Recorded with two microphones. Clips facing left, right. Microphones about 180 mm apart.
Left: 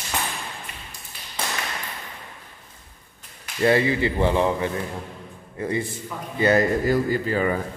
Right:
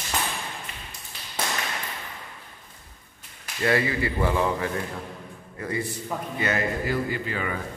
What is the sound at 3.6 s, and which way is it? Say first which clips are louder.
Speech: left 4 dB; 25° left (ahead or behind).